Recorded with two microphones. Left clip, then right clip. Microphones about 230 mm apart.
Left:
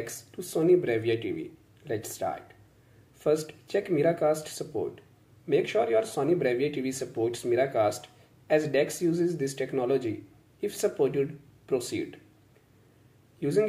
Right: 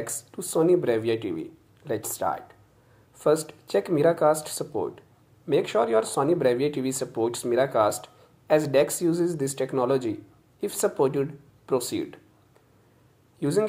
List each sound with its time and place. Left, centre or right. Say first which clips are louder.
0.5 s speech: right 2 dB; centre
13.4 s a man's voice: right 1 dB; centre